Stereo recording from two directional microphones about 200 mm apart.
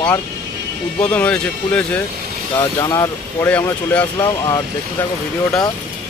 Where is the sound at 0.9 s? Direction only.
5° left (ahead or behind).